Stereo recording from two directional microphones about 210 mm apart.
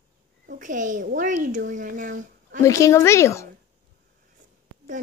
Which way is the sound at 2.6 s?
15° left (ahead or behind).